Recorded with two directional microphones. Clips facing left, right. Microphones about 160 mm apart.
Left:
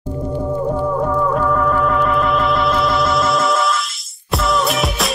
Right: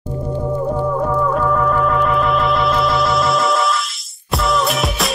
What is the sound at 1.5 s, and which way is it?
Music, centre (ahead or behind).